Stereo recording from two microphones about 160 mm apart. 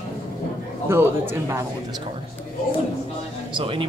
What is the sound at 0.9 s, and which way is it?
Speech, 15° right (ahead or behind).